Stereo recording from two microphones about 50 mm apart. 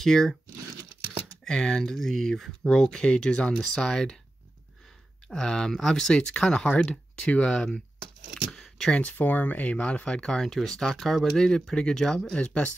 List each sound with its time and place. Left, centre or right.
0.0 s speech: centre
1.4 s speech: centre
2.7 s speech: centre
5.3 s speech: centre
8.6 s a sound: centre
9.1 s speech: left